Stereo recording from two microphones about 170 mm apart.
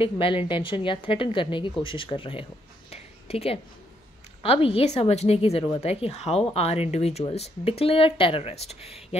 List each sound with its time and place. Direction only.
0.0 s a woman's voice: 30° left (ahead or behind)
2.9 s a sound: 35° left (ahead or behind)
4.4 s a woman's voice: 35° left (ahead or behind)